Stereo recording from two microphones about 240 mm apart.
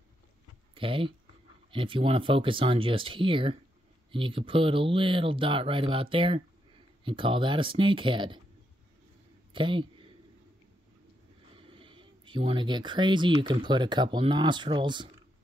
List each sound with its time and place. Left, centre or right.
0.7 s speech: right
9.5 s a sound: right
11.5 s speech: right